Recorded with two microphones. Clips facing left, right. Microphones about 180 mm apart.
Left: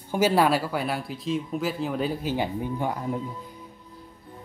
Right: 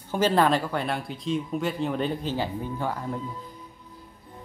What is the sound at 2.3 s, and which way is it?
Speech, 15° left (ahead or behind).